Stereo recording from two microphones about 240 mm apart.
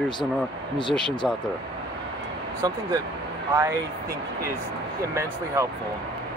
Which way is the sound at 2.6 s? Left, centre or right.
Centre.